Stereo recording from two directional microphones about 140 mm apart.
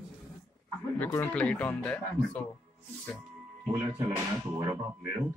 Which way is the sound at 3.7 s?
20° right (ahead or behind).